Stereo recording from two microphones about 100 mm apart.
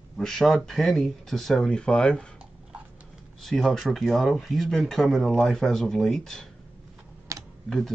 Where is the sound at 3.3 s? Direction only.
5° left (ahead or behind).